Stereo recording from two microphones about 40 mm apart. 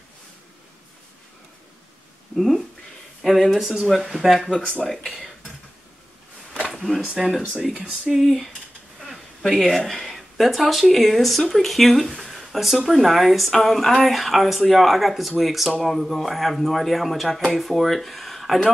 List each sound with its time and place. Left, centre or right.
2.3 s speech: centre
4.8 s speech: centre
6.7 s a sound: centre
7.1 s speech: centre
9.4 s speech: centre